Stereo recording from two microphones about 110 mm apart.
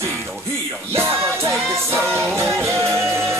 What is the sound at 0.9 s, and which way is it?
Music, 25° right (ahead or behind).